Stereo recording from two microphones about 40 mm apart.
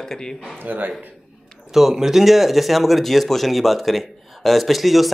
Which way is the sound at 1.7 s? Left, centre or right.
Centre.